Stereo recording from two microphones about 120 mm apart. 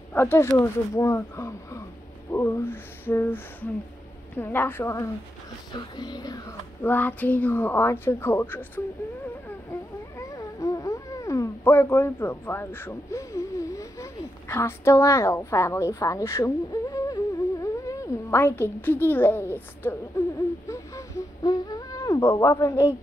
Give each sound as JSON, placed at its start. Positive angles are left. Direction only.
{"t": 0.1, "sound": "speech", "side_deg": 20}
{"t": 5.7, "sound": "a sound", "side_deg": 35}
{"t": 6.8, "sound": "speech", "side_deg": 15}
{"t": 10.3, "sound": "cat", "side_deg": 25}
{"t": 20.6, "sound": "a sound", "side_deg": 25}
{"t": 22.2, "sound": "speech", "side_deg": 20}